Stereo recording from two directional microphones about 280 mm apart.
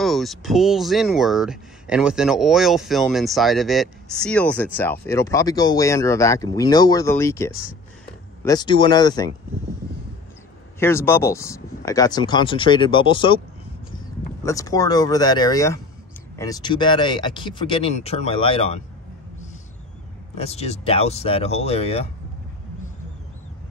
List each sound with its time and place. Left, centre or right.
0.0 s speech: centre
10.8 s speech: centre
14.4 s speech: centre
20.3 s speech: left